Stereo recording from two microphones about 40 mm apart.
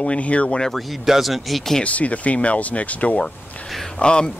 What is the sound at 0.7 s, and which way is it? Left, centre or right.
Speech, centre.